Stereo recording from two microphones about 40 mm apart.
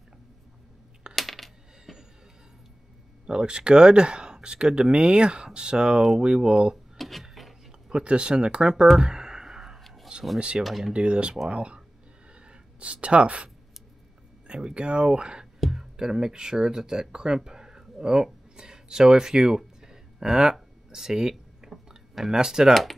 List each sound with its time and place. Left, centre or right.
1.1 s coin: centre
1.9 s a sound: centre
3.3 s speech: right
7.0 s wood: centre
7.9 s speech: right
9.0 s a sound: centre
10.1 s a sound: right
10.6 s speech: right
12.8 s speech: right
14.5 s speech: right
20.9 s a sound: centre
22.3 s speech: centre